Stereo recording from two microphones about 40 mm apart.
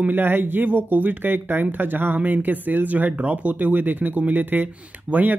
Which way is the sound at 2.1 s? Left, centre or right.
Right.